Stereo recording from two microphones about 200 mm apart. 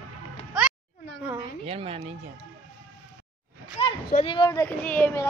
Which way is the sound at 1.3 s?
30° right (ahead or behind).